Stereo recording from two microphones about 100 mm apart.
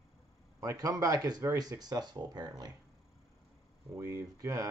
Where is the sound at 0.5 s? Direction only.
35° right (ahead or behind).